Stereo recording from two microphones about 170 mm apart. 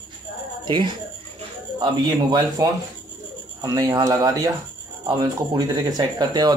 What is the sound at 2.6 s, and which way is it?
Speech, 20° right (ahead or behind).